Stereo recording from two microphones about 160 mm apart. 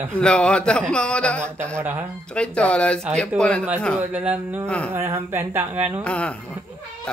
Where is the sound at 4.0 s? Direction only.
10° right (ahead or behind).